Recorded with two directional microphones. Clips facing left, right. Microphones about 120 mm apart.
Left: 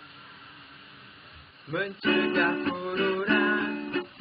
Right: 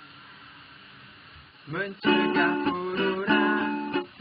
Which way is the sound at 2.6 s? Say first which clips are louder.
Right 2 dB; 25° right (ahead or behind).